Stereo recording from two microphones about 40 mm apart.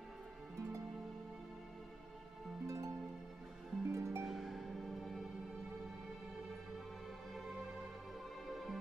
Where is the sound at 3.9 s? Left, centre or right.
Right.